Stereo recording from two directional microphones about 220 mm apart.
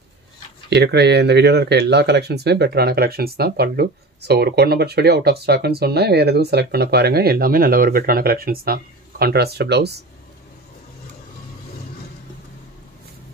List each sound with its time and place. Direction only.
0.7 s speech: 50° right (ahead or behind)